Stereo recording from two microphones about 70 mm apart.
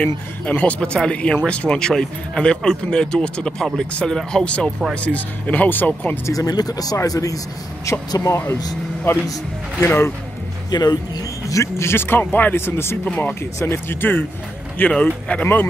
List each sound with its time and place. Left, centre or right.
0.0 s speech: left
6.2 s speech: left
7.0 s speech: left
8.3 s speech: left
10.7 s speech: left
11.4 s speech: left
14.9 s speech: centre
15.4 s speech: left